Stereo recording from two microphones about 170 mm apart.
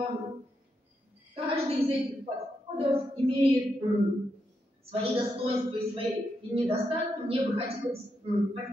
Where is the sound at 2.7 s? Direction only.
35° right (ahead or behind).